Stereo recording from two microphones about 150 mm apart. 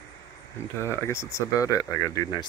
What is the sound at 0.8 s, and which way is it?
Speech, 20° left (ahead or behind).